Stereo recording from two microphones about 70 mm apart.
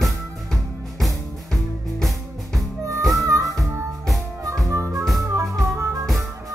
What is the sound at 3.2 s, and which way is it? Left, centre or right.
Music, right.